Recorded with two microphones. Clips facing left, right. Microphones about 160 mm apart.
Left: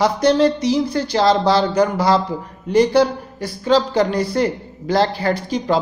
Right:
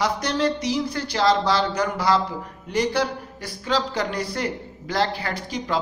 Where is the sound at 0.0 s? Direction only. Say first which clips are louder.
Left 8 dB; 30° left (ahead or behind).